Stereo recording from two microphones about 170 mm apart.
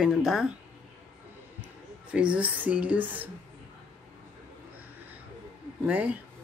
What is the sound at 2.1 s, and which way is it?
Speech, 5° right (ahead or behind).